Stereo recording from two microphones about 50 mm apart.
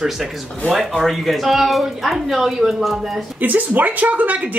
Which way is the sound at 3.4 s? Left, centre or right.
Right.